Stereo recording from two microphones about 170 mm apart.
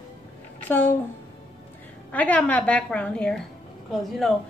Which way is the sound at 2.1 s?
10° left (ahead or behind).